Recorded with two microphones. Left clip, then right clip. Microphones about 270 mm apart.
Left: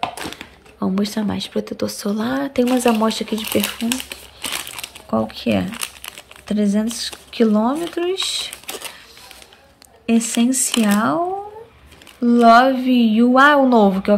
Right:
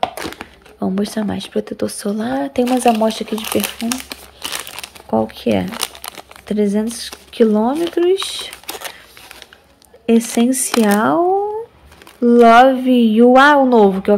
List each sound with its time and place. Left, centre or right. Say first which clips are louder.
0.0 s speech: right 4 dB; centre
4.7 s crumpling: right 6 dB; centre
5.7 s crumpling: right 4 dB; right
6.4 s speech: right 3 dB; centre
10.3 s a woman's voice: right 3 dB; centre
12.2 s a woman's voice: right 3 dB; centre